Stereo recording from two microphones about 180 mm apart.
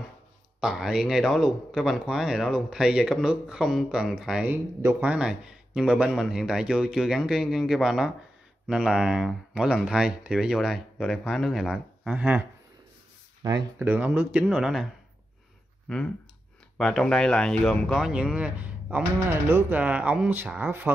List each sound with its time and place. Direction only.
0.6 s speech: centre (ahead or behind)
13.4 s speech: 25° right (ahead or behind)
13.7 s speech: 10° right (ahead or behind)
16.7 s speech: 5° left (ahead or behind)